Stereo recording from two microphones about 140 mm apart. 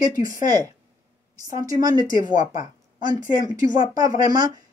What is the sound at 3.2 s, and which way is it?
Speech, 75° left (ahead or behind).